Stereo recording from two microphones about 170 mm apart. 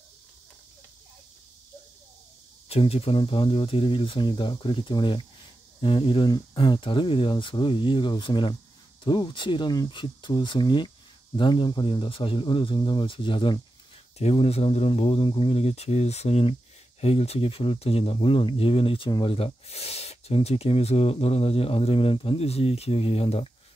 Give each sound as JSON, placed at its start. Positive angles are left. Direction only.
{"t": 2.7, "sound": "speech", "side_deg": 35}